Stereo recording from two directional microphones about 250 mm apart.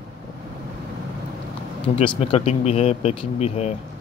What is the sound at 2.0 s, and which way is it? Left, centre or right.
Speech, left.